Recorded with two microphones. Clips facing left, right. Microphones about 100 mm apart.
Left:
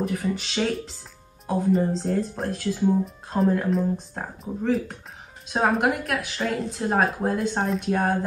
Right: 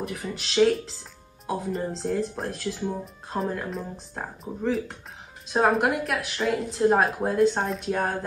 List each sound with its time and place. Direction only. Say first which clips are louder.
0.0 s speech: left 6 dB; centre (ahead or behind)